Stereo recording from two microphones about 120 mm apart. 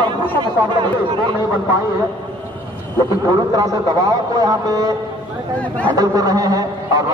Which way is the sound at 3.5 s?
30° right (ahead or behind).